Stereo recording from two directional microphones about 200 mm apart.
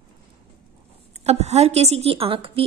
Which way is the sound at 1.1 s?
35° right (ahead or behind).